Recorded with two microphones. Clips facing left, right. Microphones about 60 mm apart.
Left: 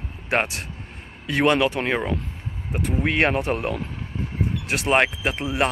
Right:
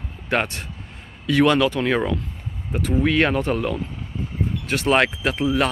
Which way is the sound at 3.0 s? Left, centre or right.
Left.